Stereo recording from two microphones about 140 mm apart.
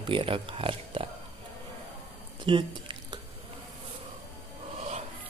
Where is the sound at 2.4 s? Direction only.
35° right (ahead or behind).